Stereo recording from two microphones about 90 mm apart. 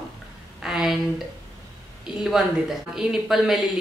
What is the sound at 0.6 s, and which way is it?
Speech, 5° right (ahead or behind).